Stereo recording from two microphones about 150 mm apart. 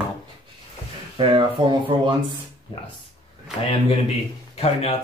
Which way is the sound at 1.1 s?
35° right (ahead or behind).